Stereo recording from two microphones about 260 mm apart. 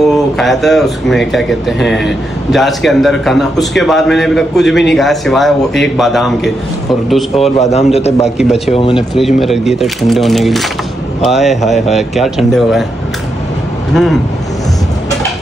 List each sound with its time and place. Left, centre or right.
0.0 s speech: centre
7.7 s a man's voice: left
8.4 s speech: centre
8.7 s a man's voice: centre
9.1 s speech: centre
13.9 s speech: centre